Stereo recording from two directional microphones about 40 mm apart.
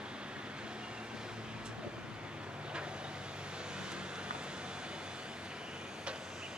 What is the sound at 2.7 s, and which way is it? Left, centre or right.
Vehicle, right.